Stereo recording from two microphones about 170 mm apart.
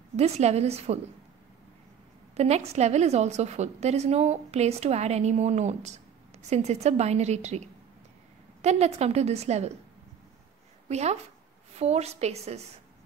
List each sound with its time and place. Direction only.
0.1 s a woman's voice: 40° right (ahead or behind)
2.3 s a woman's voice: 40° right (ahead or behind)
10.9 s a woman's voice: 40° right (ahead or behind)